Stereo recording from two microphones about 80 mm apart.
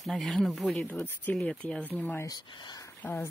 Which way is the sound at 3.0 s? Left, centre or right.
Left.